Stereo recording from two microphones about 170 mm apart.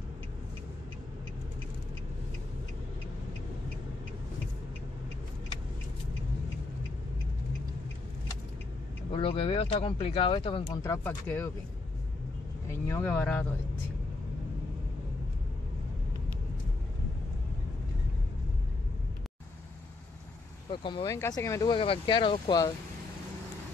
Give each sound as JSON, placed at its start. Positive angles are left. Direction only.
{"t": 9.1, "sound": "speech", "side_deg": 30}
{"t": 10.7, "sound": "speech", "side_deg": 15}
{"t": 12.8, "sound": "speech", "side_deg": 10}
{"t": 20.7, "sound": "speech", "side_deg": 30}
{"t": 21.1, "sound": "speech", "side_deg": 15}
{"t": 21.7, "sound": "speech", "side_deg": 30}